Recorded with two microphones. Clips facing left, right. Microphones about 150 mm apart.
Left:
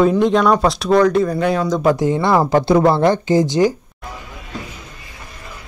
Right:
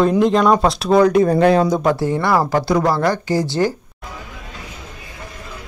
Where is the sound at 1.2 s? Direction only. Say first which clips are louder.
Right 5 dB; 60° right (ahead or behind).